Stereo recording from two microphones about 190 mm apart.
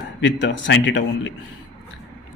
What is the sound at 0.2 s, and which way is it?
A man's voice, 75° left (ahead or behind).